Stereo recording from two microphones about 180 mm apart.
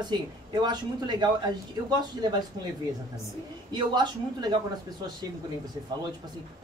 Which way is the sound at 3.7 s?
25° right (ahead or behind).